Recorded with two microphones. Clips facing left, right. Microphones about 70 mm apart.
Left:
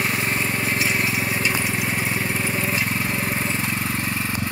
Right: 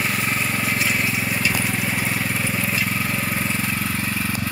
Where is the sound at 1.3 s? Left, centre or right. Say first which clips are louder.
Even; left.